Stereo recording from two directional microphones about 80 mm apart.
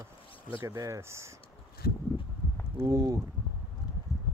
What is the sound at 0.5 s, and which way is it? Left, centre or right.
Speech, right.